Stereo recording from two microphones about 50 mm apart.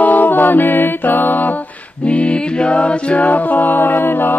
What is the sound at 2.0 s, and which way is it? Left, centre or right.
Mantra, left.